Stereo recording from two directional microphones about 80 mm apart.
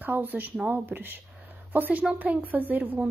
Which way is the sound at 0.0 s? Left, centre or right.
Right.